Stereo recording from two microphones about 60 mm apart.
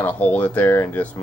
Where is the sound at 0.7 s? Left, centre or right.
Left.